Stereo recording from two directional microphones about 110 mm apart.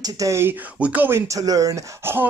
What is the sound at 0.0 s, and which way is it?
A man's voice, 30° right (ahead or behind).